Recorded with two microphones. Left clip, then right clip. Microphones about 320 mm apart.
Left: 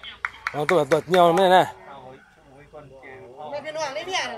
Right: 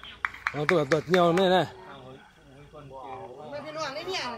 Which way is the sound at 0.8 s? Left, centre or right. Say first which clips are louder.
Left 7 dB; left.